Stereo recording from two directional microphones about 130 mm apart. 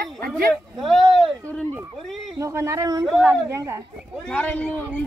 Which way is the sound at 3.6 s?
25° right (ahead or behind).